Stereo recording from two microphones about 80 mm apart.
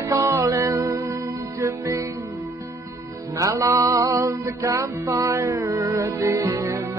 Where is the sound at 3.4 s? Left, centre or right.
Right.